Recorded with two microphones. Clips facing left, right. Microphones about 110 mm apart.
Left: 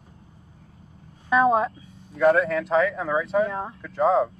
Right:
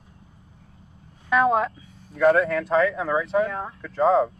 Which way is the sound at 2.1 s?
Centre (ahead or behind).